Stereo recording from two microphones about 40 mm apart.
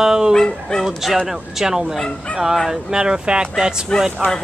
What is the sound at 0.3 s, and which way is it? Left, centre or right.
Speech, centre.